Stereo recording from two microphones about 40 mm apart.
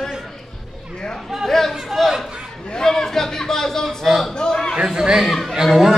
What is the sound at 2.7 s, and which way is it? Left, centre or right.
Chatter, centre.